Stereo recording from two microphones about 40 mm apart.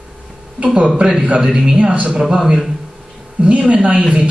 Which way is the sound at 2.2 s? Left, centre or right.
Centre.